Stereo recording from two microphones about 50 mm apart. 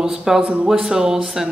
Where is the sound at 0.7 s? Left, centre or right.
Centre.